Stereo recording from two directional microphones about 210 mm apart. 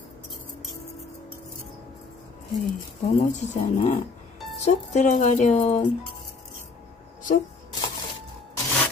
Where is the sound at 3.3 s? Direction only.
35° left (ahead or behind).